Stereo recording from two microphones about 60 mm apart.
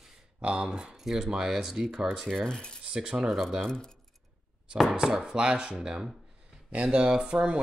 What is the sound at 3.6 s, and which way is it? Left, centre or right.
Speech, centre.